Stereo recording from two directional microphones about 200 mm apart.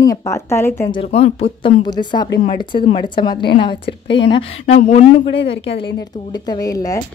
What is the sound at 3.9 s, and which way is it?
Speech, 60° left (ahead or behind).